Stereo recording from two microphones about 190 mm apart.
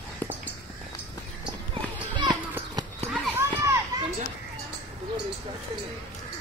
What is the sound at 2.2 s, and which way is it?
Children playing, 20° right (ahead or behind).